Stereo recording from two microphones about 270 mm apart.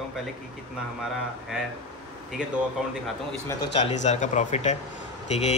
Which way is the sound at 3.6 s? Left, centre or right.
Left.